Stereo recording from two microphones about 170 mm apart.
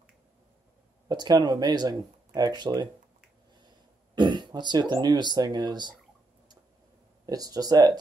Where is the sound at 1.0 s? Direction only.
25° right (ahead or behind).